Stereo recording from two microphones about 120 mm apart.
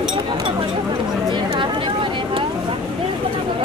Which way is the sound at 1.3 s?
40° right (ahead or behind).